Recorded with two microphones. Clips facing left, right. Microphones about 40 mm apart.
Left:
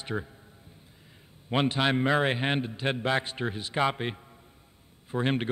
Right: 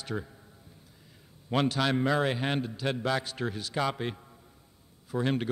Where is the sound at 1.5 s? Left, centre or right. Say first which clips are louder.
Left 1 dB; left.